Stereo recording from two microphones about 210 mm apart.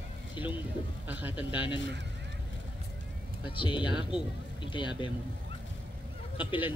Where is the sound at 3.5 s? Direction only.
25° left (ahead or behind).